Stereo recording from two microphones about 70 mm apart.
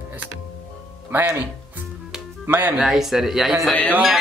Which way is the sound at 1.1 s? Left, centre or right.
Right.